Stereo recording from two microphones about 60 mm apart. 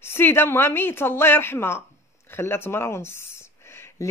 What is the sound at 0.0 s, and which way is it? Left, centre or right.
A woman's voice, left.